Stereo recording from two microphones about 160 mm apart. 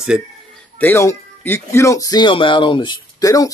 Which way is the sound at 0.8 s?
15° left (ahead or behind).